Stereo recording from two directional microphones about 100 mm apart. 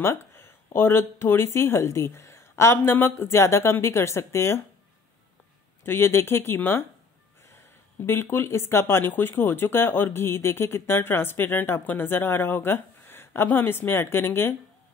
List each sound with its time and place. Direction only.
0.0 s speech: 25° left (ahead or behind)
5.9 s speech: 25° left (ahead or behind)
8.0 s speech: 25° left (ahead or behind)